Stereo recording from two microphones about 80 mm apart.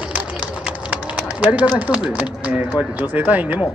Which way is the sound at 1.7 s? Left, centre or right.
Centre.